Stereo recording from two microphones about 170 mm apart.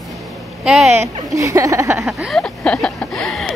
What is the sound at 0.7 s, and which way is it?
Speech, centre (ahead or behind).